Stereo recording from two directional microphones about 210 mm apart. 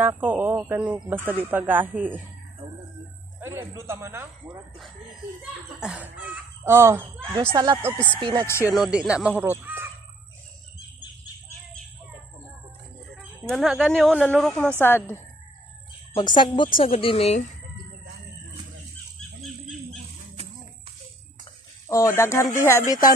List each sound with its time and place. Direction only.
0.0 s speech: 10° right (ahead or behind)
3.3 s speech: 10° right (ahead or behind)
5.4 s speech: 5° right (ahead or behind); by 8.5 s 20° right (ahead or behind)
8.5 s speech: 15° left (ahead or behind)
8.7 s speech: 5° right (ahead or behind)
13.1 s speech: centre (ahead or behind)
16.1 s a woman's voice: 20° left (ahead or behind)
19.1 s dog: centre (ahead or behind)
21.8 s speech: 15° left (ahead or behind)